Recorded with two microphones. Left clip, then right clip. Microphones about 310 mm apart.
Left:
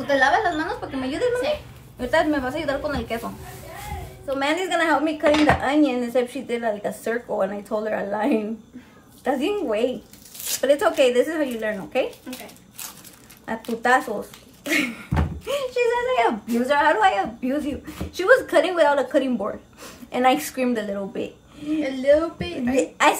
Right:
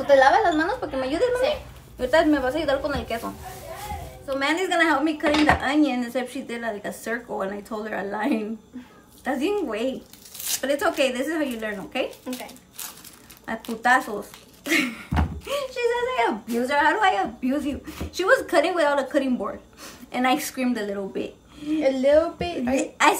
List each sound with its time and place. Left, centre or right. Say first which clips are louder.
0.0 s a woman's voice: right 3 dB; centre
4.3 s speech: left 1 dB; centre
21.8 s speech: right 1 dB; centre
22.8 s speech: left 2 dB; centre